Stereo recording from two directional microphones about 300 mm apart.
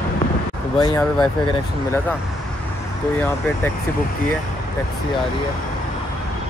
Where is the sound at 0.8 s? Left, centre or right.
Centre.